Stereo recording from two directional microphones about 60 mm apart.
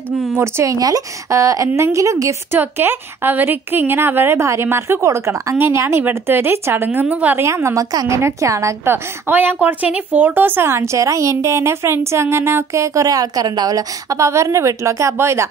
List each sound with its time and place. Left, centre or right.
0.7 s a woman's voice: right
2.5 s a woman's voice: right
7.0 s a woman's voice: right
7.4 s a woman's voice: right
8.8 s a woman's voice: right
10.7 s a woman's voice: right